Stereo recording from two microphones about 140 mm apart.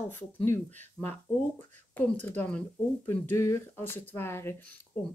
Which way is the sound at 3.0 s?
20° left (ahead or behind).